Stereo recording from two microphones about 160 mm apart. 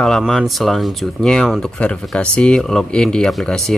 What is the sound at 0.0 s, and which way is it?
Speech, centre (ahead or behind).